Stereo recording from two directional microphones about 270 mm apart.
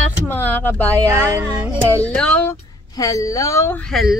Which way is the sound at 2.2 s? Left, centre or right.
Centre.